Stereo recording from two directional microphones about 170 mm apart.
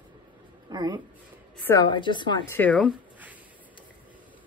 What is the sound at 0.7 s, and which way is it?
Speech, 25° right (ahead or behind).